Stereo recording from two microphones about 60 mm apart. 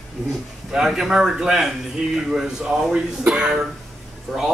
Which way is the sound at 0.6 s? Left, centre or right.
Centre.